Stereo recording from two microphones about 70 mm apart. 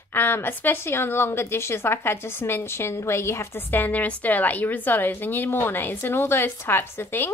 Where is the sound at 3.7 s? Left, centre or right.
Left.